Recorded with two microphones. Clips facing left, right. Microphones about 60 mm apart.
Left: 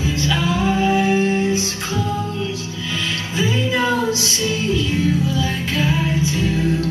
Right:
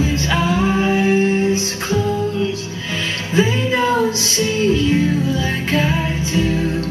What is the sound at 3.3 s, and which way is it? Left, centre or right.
Music, right.